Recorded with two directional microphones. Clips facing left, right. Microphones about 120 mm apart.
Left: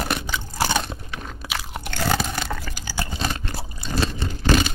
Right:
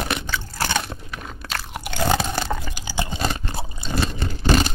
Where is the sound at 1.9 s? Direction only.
15° right (ahead or behind).